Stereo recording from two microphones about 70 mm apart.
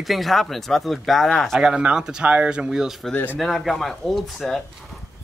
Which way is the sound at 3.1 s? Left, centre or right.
Left.